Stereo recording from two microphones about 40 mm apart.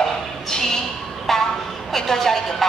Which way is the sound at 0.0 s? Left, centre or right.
Centre.